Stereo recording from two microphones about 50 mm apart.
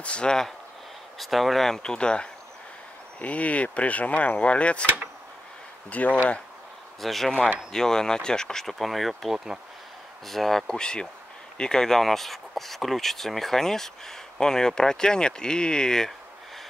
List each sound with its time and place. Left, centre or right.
0.0 s speech: left
1.2 s speech: centre
3.2 s speech: left
4.8 s speech: right
5.9 s speech: left
7.0 s speech: centre